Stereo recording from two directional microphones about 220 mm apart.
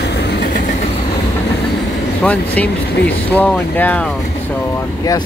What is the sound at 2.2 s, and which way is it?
Speech, 5° left (ahead or behind).